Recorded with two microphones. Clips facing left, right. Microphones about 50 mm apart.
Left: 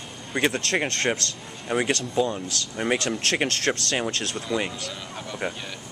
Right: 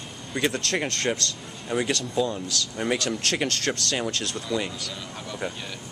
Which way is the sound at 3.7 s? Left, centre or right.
Centre.